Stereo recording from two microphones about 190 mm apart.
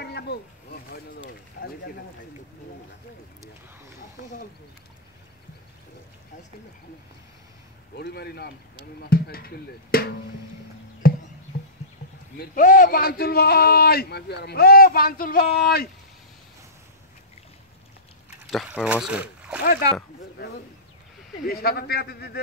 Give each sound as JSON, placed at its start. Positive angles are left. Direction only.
{"t": 0.0, "sound": "a sound", "side_deg": 60}
{"t": 7.9, "sound": "a man's voice", "side_deg": 60}
{"t": 11.0, "sound": "a sound", "side_deg": 50}
{"t": 12.4, "sound": "a man's voice", "side_deg": 45}
{"t": 18.5, "sound": "speech", "side_deg": 0}
{"t": 19.6, "sound": "a man's voice", "side_deg": 50}
{"t": 21.5, "sound": "a man's voice", "side_deg": 55}